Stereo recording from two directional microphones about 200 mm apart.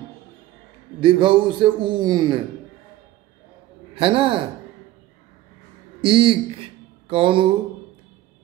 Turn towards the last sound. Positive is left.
turn(degrees=-25)  # may be behind; listen again after turning